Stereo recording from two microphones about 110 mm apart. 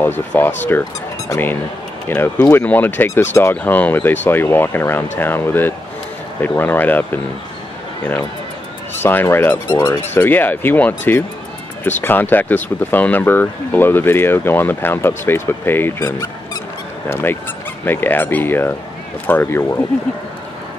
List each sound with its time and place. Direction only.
0.3 s speech: 15° left (ahead or behind)
9.0 s speech: 20° left (ahead or behind)
16.0 s speech: 30° left (ahead or behind)
17.1 s speech: 20° left (ahead or behind)